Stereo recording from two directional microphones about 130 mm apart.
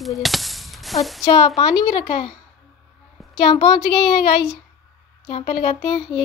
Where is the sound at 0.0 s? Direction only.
Centre (ahead or behind).